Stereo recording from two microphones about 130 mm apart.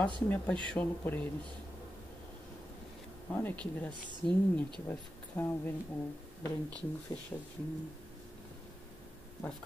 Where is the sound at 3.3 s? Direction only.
15° left (ahead or behind).